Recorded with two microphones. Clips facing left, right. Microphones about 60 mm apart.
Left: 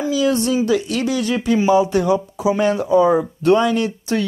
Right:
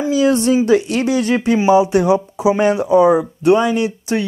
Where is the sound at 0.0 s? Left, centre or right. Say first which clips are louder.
Right 3 dB; right.